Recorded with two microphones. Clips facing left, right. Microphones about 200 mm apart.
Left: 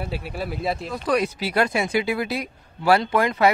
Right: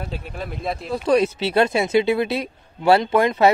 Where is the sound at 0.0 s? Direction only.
10° left (ahead or behind).